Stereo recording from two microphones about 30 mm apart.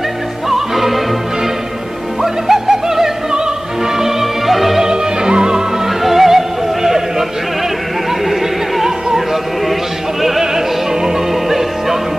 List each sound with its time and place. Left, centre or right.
0.5 s music: centre
2.2 s music: centre
4.8 s music: right
6.0 s music: centre
8.3 s opera: centre
11.4 s music: centre